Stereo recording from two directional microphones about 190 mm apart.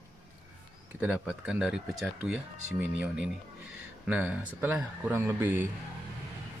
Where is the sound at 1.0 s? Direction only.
5° right (ahead or behind).